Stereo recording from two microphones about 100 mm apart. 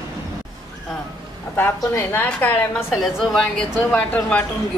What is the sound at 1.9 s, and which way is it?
Speech, 20° left (ahead or behind).